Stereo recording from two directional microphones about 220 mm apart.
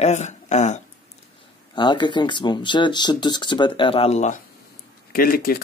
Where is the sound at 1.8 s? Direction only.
20° left (ahead or behind).